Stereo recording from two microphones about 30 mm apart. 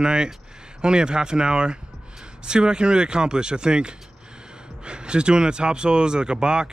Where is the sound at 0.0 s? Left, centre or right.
Right.